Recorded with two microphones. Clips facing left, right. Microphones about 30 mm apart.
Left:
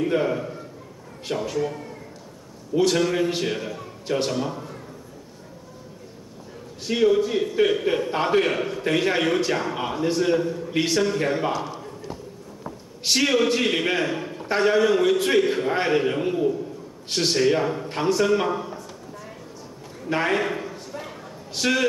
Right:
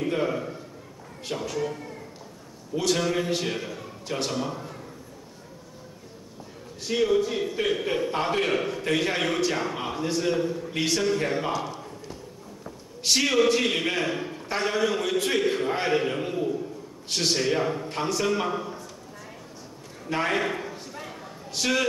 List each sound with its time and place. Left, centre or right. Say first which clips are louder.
0.0 s a man's voice: left 4 dB; centre
6.9 s a man's voice: left 4 dB; centre
14.4 s a man's voice: left 7 dB; centre
20.1 s a sound: left 3 dB; centre